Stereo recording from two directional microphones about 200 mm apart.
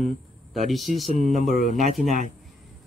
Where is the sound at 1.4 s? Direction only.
40° left (ahead or behind).